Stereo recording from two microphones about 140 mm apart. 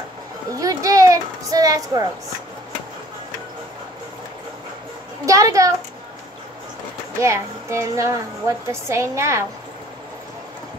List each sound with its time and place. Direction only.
0.5 s a sound: 25° right (ahead or behind)
5.2 s a child's voice: 25° right (ahead or behind)
7.2 s a child's voice: 20° right (ahead or behind)